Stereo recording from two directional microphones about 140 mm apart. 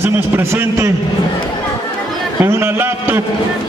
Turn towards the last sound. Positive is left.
turn(degrees=-15)  # may be behind; listen again after turning